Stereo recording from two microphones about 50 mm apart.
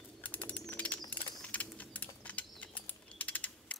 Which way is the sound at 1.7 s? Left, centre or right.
Left.